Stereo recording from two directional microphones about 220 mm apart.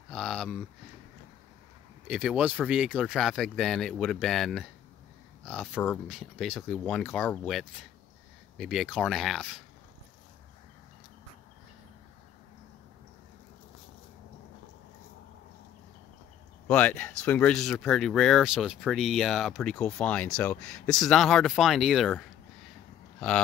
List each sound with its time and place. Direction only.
0.1 s a sound: centre (ahead or behind)
2.0 s speech: 5° right (ahead or behind)
16.6 s speech: 5° left (ahead or behind)